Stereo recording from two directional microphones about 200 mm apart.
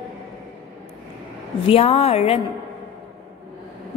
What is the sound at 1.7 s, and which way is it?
Speech, 30° left (ahead or behind).